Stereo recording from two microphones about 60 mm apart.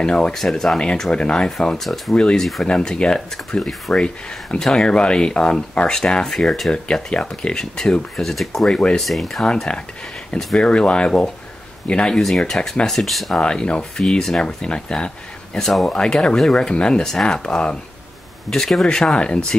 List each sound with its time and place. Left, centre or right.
0.0 s speech: centre
6.7 s speech: centre
8.6 s speech: centre
9.0 s speech: centre
10.3 s speech: centre
12.2 s speech: centre
13.4 s speech: centre
18.5 s speech: centre